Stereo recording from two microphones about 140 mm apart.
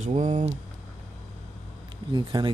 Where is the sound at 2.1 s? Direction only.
30° right (ahead or behind).